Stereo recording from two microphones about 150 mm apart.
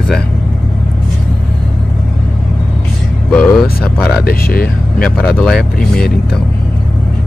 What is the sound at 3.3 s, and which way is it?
Vehicle, 10° left (ahead or behind).